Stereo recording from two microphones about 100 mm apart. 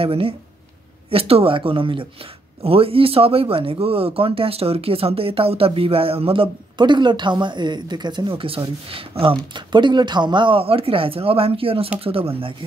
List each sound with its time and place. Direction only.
0.0 s speech: 70° right (ahead or behind)
2.6 s speech: 70° right (ahead or behind)
6.8 s speech: 50° right (ahead or behind)
9.5 s speech: 50° right (ahead or behind); by 12.5 s 65° right (ahead or behind)